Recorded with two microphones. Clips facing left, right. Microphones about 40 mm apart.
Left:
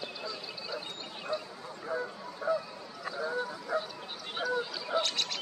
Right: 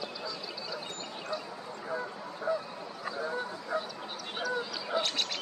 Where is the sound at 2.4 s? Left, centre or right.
Right.